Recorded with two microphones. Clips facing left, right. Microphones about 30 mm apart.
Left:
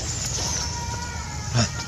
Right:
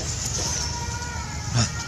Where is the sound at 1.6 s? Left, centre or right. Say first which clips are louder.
Left 2 dB; centre.